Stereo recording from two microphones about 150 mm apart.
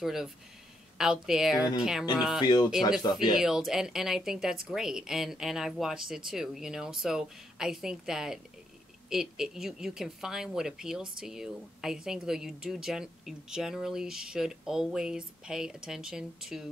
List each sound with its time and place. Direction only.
0.0 s speech: 5° right (ahead or behind)
2.4 s speech: 30° left (ahead or behind)
3.3 s speech: 5° right (ahead or behind)